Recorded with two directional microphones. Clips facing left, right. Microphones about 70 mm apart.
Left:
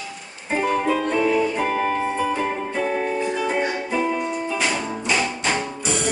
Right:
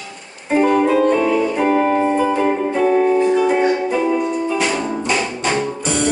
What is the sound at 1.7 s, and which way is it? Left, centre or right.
Music, centre.